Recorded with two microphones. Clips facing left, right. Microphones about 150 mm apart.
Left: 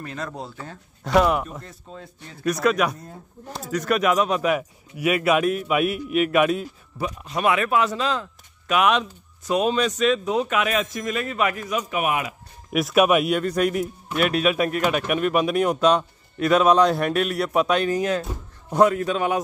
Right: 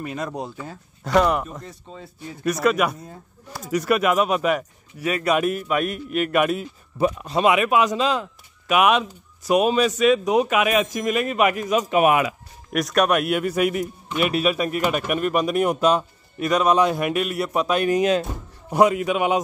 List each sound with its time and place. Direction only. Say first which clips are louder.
0.0 s speech: right 4 dB; 15° right (ahead or behind)
1.0 s a man's voice: even; 5° left (ahead or behind)
4.9 s speech: left 3 dB; 10° left (ahead or behind)
5.3 s a man's voice: right 2 dB; centre (ahead or behind)
7.3 s speech: right 2 dB; 15° right (ahead or behind)
12.0 s speech: right 8 dB; 80° right
12.7 s a man's voice: left 2 dB; 5° left (ahead or behind)
17.8 s speech: right 4 dB; 20° right (ahead or behind)